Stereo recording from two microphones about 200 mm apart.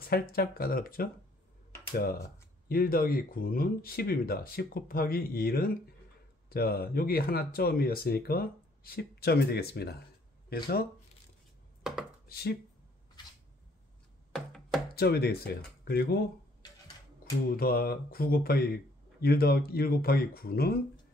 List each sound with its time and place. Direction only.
0.0 s speech: 50° left (ahead or behind)
12.3 s speech: 55° left (ahead or behind)
14.3 s music: centre (ahead or behind)
15.0 s speech: 50° left (ahead or behind)